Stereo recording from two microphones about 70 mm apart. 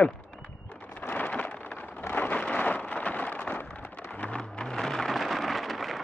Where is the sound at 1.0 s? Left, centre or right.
Left.